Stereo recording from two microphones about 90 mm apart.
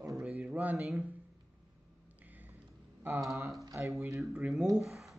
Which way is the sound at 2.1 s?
20° right (ahead or behind).